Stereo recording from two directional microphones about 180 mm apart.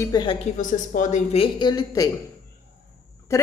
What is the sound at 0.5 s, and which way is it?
A woman's voice, 45° left (ahead or behind).